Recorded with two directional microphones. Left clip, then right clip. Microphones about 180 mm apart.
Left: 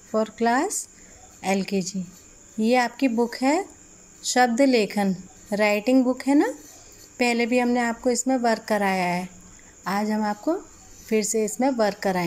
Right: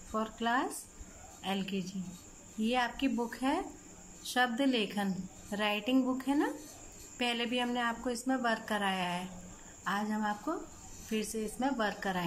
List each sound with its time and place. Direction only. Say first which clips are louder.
0.1 s a woman's voice: left 10 dB; 30° left (ahead or behind)